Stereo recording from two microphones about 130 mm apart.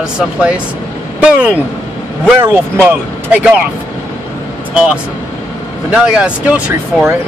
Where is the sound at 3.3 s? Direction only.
10° right (ahead or behind).